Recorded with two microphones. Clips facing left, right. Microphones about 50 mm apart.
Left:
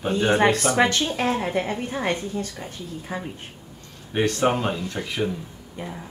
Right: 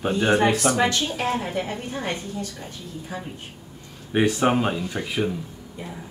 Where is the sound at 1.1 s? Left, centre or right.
Centre.